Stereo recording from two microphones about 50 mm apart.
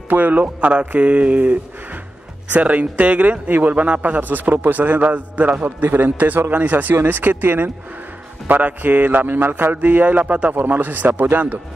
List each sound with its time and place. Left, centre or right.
0.1 s a man's voice: right
0.7 s a man's voice: right
8.5 s a man's voice: right